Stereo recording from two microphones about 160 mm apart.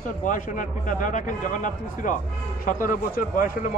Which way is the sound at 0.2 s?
55° left (ahead or behind).